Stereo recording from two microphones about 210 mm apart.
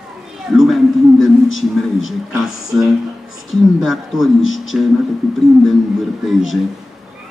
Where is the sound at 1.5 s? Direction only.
70° left (ahead or behind).